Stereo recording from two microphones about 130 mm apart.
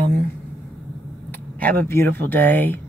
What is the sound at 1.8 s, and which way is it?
Speech, 15° left (ahead or behind).